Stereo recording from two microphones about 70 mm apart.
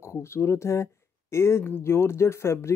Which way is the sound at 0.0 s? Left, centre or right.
Left.